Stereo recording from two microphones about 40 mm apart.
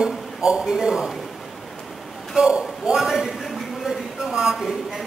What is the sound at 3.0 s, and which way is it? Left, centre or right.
Speech, centre.